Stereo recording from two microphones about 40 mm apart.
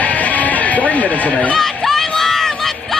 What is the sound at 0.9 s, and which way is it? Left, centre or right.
Speech, left.